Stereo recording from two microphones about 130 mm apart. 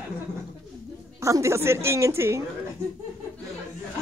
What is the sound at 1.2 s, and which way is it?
A woman's voice, 20° right (ahead or behind).